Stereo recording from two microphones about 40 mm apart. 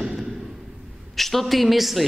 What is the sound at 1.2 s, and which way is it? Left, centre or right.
Speech, centre.